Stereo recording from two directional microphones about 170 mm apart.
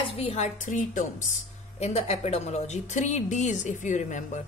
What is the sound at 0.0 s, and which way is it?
Speech, 35° left (ahead or behind).